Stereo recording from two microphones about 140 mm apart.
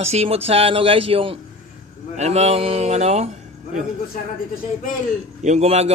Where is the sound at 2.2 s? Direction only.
50° right (ahead or behind).